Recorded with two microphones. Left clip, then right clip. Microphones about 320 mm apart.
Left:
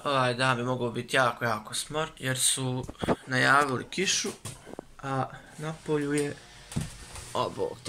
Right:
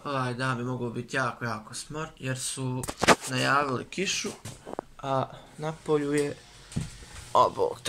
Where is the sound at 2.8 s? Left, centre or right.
Right.